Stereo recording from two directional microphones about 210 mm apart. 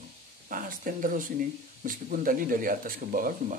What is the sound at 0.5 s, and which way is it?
Speech, 40° right (ahead or behind).